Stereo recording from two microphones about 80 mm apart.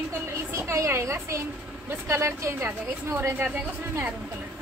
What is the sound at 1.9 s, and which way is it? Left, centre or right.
Speech, right.